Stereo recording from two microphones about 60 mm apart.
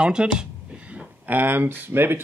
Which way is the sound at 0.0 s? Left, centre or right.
Centre.